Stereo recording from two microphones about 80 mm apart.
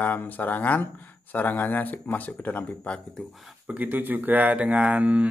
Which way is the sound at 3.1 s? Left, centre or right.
Centre.